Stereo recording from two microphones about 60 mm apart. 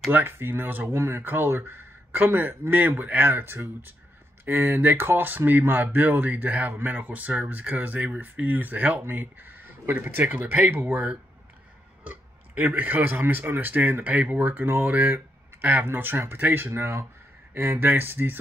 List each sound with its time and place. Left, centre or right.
0.1 s speech: right
12.0 s speech: right